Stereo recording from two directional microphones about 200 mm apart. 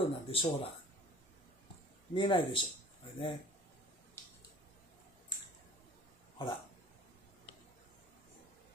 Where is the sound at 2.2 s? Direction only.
25° left (ahead or behind).